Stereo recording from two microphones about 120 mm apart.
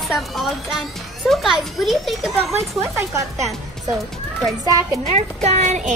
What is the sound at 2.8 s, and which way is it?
Speech, 25° right (ahead or behind).